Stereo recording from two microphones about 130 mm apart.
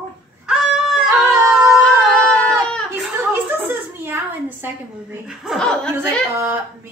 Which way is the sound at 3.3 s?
15° right (ahead or behind).